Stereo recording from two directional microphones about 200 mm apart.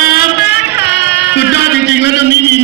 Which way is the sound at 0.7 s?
60° left (ahead or behind).